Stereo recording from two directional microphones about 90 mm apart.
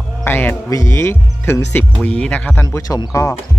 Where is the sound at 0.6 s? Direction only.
35° left (ahead or behind).